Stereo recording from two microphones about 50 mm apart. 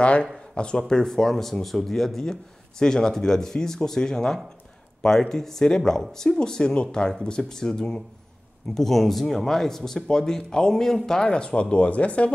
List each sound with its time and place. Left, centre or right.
0.0 s speech: left